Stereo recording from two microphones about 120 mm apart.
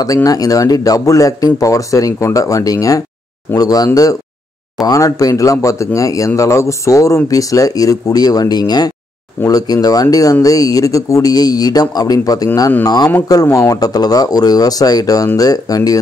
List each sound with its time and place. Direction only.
0.0 s speech: 30° left (ahead or behind)